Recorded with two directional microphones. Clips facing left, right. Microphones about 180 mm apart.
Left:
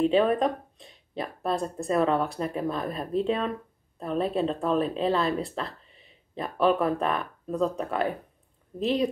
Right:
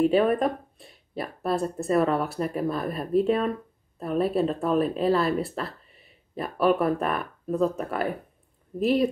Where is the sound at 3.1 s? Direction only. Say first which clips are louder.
Right 4 dB; 5° right (ahead or behind).